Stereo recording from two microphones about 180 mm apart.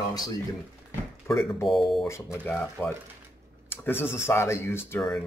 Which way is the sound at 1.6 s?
Centre (ahead or behind).